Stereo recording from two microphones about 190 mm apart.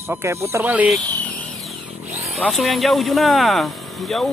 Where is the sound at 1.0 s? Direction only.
10° left (ahead or behind).